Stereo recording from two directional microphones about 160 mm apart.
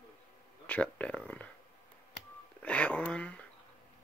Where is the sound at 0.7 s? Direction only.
10° left (ahead or behind).